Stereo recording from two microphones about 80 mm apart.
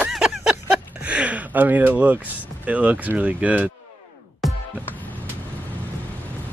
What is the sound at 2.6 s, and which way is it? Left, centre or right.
Speech, centre.